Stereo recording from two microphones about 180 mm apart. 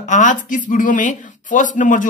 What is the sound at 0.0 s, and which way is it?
Speech, 45° left (ahead or behind).